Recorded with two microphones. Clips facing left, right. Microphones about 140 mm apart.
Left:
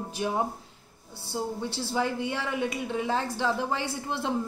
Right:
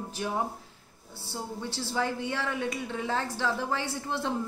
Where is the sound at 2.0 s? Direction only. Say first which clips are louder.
Left 2 dB; 15° left (ahead or behind).